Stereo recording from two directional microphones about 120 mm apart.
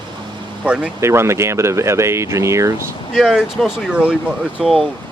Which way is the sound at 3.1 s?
5° right (ahead or behind).